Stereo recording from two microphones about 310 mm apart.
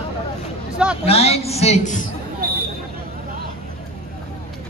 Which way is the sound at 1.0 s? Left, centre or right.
Centre.